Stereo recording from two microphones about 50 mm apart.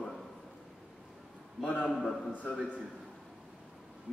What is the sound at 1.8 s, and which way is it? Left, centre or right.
Speech, centre.